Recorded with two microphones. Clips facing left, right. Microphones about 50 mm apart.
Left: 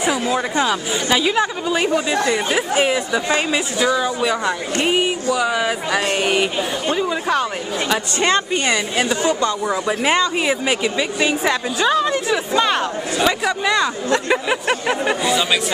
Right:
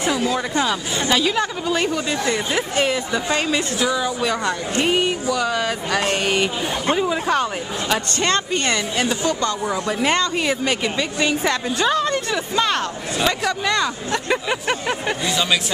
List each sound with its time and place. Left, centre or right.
0.2 s speech: centre
0.7 s speech: centre
8.2 s speech: centre